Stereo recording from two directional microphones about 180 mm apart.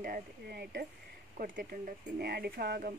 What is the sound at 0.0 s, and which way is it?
Speech, 55° right (ahead or behind).